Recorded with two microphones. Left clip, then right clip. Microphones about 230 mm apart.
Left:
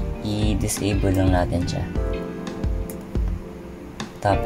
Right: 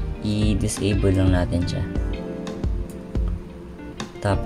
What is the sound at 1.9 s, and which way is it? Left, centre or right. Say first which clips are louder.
Music: left 2 dB; centre.